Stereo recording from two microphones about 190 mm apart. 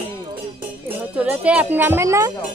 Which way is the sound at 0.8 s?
10° right (ahead or behind).